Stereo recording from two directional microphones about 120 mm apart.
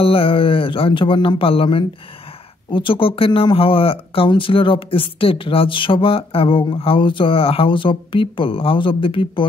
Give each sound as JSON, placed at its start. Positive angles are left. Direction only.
{"t": 0.0, "sound": "speech", "side_deg": 50}